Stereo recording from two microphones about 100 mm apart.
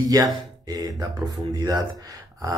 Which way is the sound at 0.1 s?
35° right (ahead or behind).